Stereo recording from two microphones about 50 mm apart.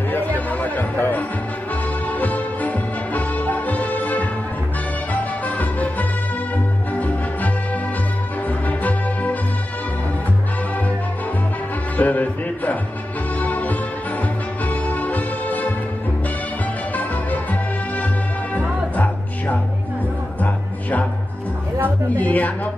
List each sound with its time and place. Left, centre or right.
0.1 s music: left
12.0 s music: left
16.9 s music: left
22.1 s music: left